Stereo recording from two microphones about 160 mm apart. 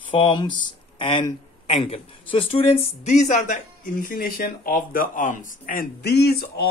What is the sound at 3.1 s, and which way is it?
Speech, 50° left (ahead or behind).